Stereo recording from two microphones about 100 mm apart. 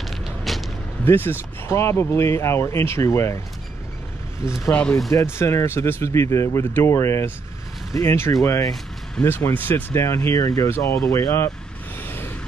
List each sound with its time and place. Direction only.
0.0 s vehicle: centre (ahead or behind)
1.0 s speech: 20° left (ahead or behind)
5.1 s speech: 25° left (ahead or behind)
10.0 s speech: 30° left (ahead or behind)
12.0 s a sound: 20° left (ahead or behind)